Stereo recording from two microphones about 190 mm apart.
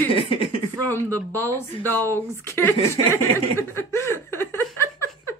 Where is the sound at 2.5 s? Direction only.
10° left (ahead or behind).